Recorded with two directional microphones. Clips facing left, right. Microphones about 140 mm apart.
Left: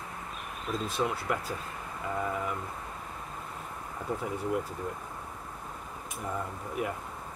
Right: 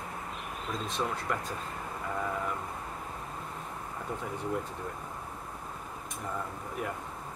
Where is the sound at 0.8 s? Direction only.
5° left (ahead or behind).